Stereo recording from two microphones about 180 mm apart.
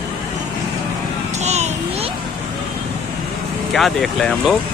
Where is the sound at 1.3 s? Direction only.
40° right (ahead or behind).